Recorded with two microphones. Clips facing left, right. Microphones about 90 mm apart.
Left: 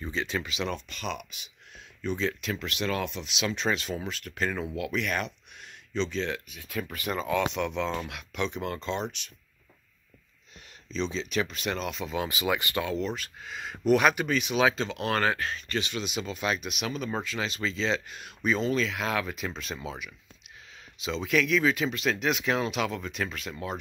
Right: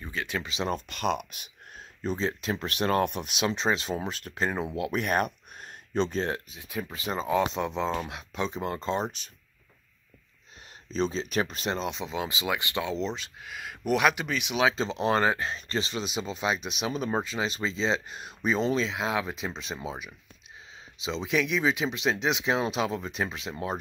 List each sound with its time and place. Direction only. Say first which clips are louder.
0.0 s speech: left 2 dB; 10° right (ahead or behind)
0.5 s speech: right 2 dB; 30° right (ahead or behind)
0.7 s speech: right 6 dB; 50° right (ahead or behind)
3.4 s speech: right 2 dB; 30° right (ahead or behind)
4.9 s speech: right 5 dB; 40° right (ahead or behind)
6.5 s speech: even; 20° right (ahead or behind); by 9.1 s 40° right (ahead or behind)
10.9 s speech: right 3 dB; 40° right (ahead or behind)
11.7 s speech: right 1 dB; 25° right (ahead or behind)
12.5 s speech: even; 15° right (ahead or behind)
13.4 s speech: left 3 dB; 10° right (ahead or behind)
14.8 s speech: right 3 dB; 25° right (ahead or behind)
21.2 s speech: left 2 dB; 20° right (ahead or behind)